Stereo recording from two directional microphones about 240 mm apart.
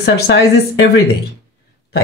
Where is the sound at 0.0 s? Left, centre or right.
Left.